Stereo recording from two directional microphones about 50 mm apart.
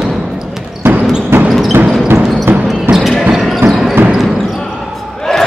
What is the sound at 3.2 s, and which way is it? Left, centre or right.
Basketball bounce, centre.